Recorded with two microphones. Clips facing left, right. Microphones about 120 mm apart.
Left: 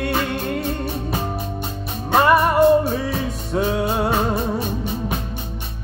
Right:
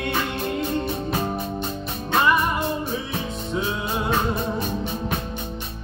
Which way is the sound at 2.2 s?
55° left (ahead or behind).